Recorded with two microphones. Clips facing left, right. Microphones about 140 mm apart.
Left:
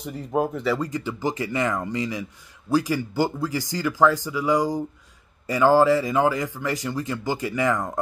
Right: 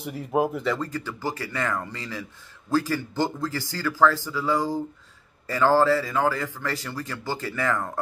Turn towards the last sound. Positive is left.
turn(degrees=15)  # may be behind; listen again after turning